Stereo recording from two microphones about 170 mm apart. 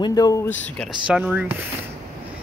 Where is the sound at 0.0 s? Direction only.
20° left (ahead or behind).